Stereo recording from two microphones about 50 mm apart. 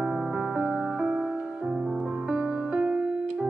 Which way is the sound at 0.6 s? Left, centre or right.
Right.